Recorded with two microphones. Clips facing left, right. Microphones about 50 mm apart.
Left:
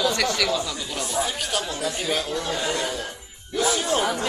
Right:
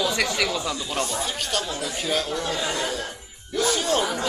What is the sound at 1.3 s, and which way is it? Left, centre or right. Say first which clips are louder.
Speech: even; centre.